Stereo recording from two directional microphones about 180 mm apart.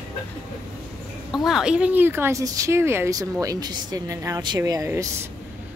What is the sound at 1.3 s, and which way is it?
Speech, centre (ahead or behind).